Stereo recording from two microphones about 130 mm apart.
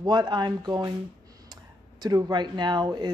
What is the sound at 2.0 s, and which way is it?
A woman's voice, 30° right (ahead or behind).